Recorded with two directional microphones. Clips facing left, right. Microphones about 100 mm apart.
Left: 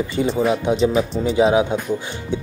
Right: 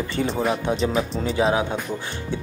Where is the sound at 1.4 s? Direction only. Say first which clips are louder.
Left 5 dB; 15° left (ahead or behind).